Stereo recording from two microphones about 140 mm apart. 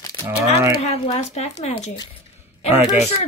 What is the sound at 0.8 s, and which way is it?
Speech, 50° left (ahead or behind).